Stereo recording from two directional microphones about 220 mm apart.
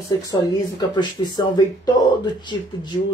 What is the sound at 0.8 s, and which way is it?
Speech, 20° left (ahead or behind).